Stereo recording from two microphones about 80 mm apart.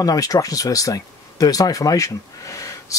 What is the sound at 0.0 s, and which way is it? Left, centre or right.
Speech, left.